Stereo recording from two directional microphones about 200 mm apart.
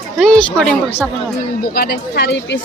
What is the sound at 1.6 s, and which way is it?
Speech, 50° left (ahead or behind).